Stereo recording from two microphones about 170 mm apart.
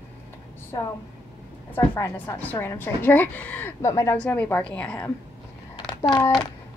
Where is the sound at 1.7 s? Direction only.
10° left (ahead or behind).